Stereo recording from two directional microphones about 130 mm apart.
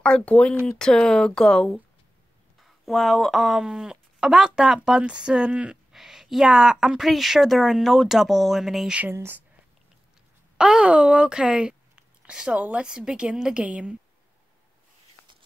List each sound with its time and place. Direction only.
0.0 s a woman's voice: 10° left (ahead or behind)
9.1 s speech: 15° right (ahead or behind)
10.6 s speech: 10° right (ahead or behind)